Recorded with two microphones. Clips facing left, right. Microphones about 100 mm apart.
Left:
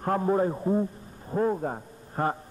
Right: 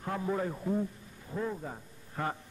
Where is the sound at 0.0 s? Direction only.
45° left (ahead or behind).